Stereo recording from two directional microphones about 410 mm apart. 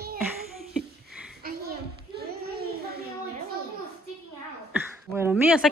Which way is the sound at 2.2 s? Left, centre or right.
Right.